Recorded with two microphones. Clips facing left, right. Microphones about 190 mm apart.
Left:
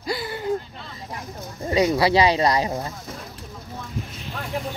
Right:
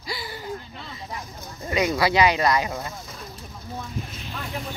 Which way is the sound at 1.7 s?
30° left (ahead or behind).